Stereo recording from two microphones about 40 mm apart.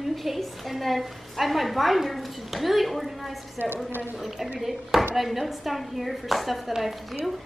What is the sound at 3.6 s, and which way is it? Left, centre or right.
Speech, right.